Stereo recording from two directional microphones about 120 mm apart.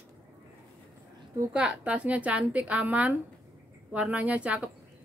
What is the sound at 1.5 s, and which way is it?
A woman's voice, 10° right (ahead or behind).